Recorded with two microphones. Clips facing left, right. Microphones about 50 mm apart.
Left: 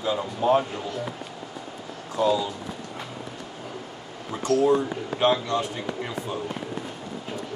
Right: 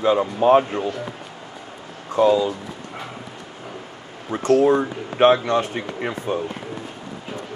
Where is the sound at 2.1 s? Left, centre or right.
Right.